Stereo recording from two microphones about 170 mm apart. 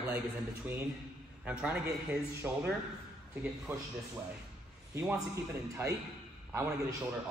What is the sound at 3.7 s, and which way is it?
Speech, 10° right (ahead or behind).